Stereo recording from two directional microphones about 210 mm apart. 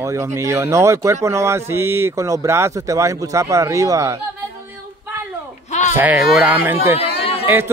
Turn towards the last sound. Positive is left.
turn(degrees=25)  # may be behind; listen again after turning